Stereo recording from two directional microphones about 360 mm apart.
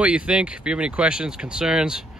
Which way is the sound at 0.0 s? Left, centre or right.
Centre.